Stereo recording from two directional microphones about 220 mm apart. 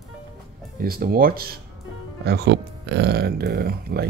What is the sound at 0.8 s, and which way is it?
Speech, 40° right (ahead or behind).